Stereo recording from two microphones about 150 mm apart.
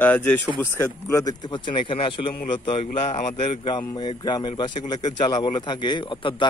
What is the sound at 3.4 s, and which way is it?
A man's voice, 35° left (ahead or behind).